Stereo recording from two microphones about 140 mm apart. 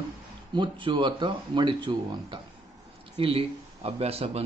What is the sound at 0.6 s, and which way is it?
Speech, 35° right (ahead or behind).